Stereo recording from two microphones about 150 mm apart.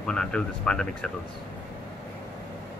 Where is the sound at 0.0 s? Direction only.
5° left (ahead or behind).